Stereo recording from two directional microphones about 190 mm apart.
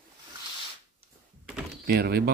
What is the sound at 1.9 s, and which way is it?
Speech, 55° right (ahead or behind).